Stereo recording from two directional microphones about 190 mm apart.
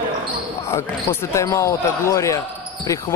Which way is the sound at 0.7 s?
15° left (ahead or behind).